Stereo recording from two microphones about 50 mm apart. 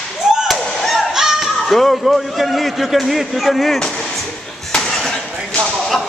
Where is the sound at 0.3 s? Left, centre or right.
Centre.